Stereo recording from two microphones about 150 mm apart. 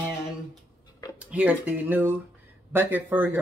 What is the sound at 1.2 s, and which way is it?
Speech, 10° right (ahead or behind).